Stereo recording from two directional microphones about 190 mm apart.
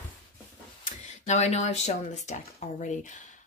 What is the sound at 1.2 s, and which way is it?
Speech, 35° left (ahead or behind).